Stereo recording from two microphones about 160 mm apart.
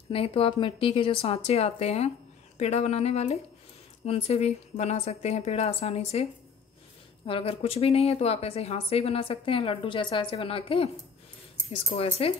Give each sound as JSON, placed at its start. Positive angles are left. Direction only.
{"t": 0.1, "sound": "speech", "side_deg": 35}
{"t": 7.2, "sound": "speech", "side_deg": 35}